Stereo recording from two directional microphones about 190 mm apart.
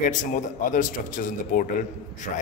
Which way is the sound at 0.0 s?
45° left (ahead or behind).